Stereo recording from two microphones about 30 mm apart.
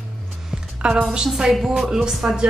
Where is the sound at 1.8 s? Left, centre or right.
Right.